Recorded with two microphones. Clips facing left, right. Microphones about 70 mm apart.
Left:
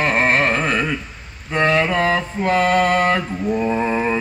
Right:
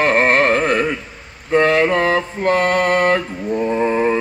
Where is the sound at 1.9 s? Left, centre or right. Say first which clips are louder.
Right 2 dB; centre.